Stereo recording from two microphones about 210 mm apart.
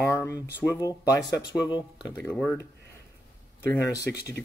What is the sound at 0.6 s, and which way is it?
Speech, 15° left (ahead or behind).